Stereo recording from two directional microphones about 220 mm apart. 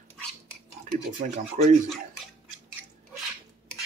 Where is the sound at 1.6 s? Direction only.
30° right (ahead or behind).